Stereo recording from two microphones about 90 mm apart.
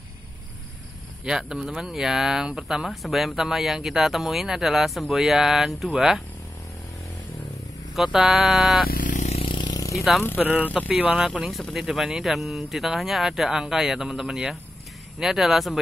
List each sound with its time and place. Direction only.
1.2 s speech: 5° right (ahead or behind)
7.9 s speech: 5° right (ahead or behind)
9.4 s a sound: 70° left (ahead or behind)
9.7 s vehicle: 40° left (ahead or behind)
10.4 s speech: 20° right (ahead or behind); by 15.8 s 5° right (ahead or behind)